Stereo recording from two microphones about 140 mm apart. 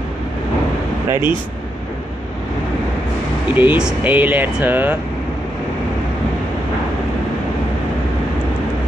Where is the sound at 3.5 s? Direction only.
10° right (ahead or behind).